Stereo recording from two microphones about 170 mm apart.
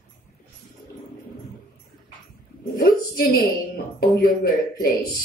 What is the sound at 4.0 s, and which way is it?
Speech, 55° left (ahead or behind).